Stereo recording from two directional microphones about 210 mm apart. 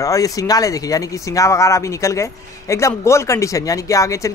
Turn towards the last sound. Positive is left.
turn(degrees=15)  # may be behind; listen again after turning